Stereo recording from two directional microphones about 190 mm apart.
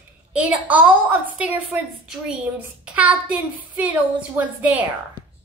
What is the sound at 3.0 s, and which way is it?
Speech, 5° right (ahead or behind).